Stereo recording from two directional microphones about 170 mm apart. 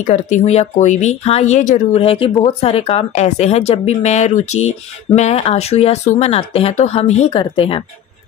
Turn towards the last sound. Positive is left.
turn(degrees=30)  # may be behind; listen again after turning